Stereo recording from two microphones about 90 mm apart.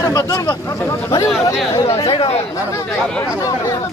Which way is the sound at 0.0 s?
40° left (ahead or behind).